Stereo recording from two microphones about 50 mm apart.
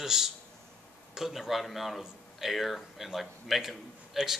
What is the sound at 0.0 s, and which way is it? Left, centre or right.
Speech, centre.